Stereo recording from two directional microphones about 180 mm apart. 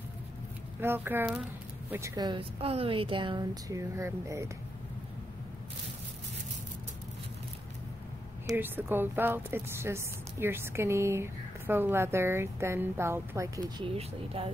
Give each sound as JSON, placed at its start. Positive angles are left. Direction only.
{"t": 0.7, "sound": "a woman's voice", "side_deg": -15}
{"t": 8.5, "sound": "a woman's voice", "side_deg": -10}
{"t": 13.7, "sound": "speech", "side_deg": -30}